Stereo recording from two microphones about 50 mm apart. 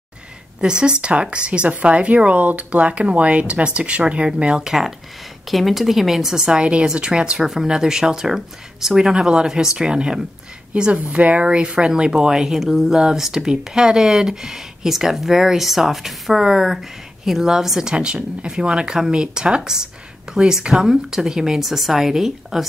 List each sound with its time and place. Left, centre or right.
0.6 s speech: centre
5.5 s speech: centre
10.7 s speech: right; by 22.7 s centre